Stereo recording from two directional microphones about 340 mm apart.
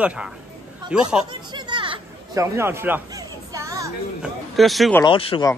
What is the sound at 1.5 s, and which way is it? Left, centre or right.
Chatter, centre.